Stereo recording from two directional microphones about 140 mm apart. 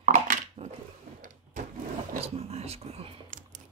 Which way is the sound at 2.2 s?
45° right (ahead or behind).